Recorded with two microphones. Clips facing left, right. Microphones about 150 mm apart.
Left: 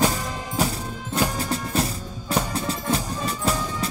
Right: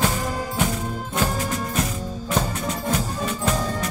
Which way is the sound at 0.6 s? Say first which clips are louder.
Left 2 dB; 35° left (ahead or behind).